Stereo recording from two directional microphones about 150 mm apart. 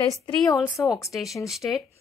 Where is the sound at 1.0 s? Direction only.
Centre (ahead or behind).